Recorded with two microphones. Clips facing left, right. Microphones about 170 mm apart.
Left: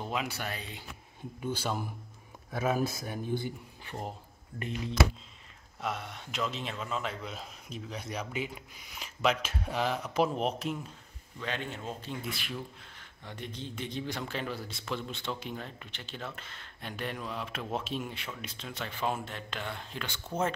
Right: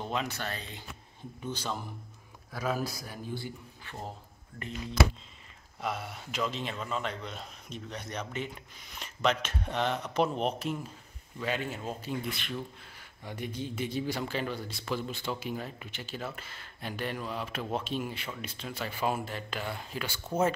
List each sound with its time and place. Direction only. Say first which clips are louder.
0.0 s speech: right 1 dB; 5° left (ahead or behind)
2.5 s speech: left 3 dB; 25° left (ahead or behind)
5.8 s a man's voice: right 1 dB; centre (ahead or behind)
12.4 s a man's voice: right 2 dB; 5° left (ahead or behind)
12.9 s a man's voice: right 3 dB; 10° right (ahead or behind)